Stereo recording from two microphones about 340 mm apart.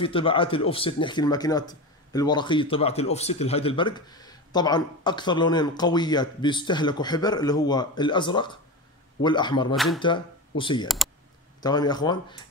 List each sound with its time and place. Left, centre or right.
0.0 s speech: centre
9.8 s speech: centre
10.0 s speech: centre